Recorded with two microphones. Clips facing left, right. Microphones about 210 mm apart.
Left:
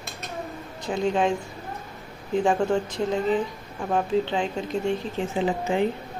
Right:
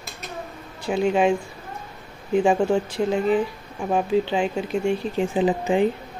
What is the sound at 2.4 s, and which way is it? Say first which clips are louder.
Speech: right 2 dB; 5° right (ahead or behind).